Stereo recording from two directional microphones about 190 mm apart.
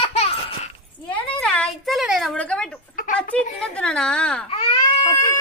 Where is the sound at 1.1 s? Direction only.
5° left (ahead or behind).